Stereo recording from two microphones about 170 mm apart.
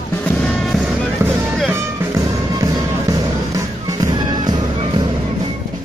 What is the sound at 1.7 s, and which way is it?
Music, 15° right (ahead or behind).